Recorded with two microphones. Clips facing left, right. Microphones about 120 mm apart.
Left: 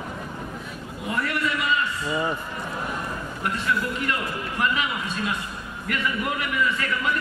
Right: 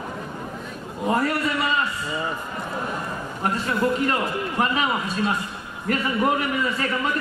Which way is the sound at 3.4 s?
35° right (ahead or behind).